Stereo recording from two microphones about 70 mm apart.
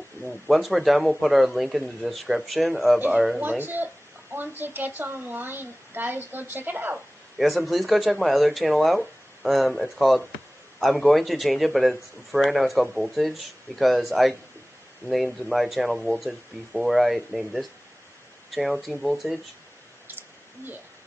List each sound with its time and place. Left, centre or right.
0.2 s speech: centre
3.3 s speech: right
7.3 s speech: centre